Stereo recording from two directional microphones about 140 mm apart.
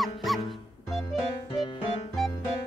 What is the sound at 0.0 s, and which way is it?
Music, centre (ahead or behind).